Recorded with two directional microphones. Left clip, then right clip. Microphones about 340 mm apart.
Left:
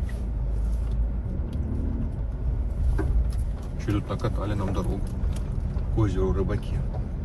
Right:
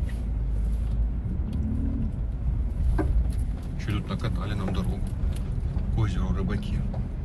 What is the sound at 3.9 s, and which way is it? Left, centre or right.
Speech, left.